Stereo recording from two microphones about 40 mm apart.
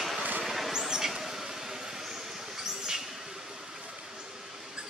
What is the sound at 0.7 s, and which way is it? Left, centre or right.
Vehicle, centre.